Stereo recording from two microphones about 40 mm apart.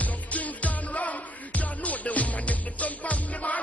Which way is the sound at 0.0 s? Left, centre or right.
Left.